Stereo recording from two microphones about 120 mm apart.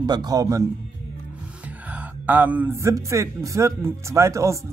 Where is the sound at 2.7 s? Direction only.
25° right (ahead or behind).